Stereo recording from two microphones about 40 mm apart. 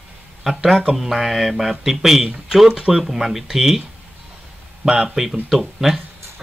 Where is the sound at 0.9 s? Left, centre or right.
Centre.